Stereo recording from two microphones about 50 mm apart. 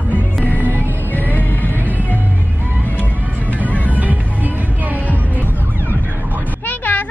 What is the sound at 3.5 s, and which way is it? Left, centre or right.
Music, left.